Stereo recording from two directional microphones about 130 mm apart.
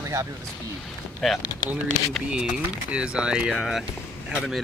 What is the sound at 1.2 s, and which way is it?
Speech, centre (ahead or behind).